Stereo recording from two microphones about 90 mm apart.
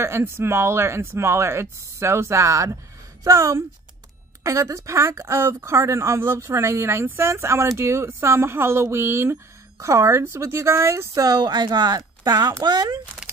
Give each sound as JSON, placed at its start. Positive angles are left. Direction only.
{"t": 0.0, "sound": "speech", "side_deg": -30}
{"t": 11.2, "sound": "speech", "side_deg": -50}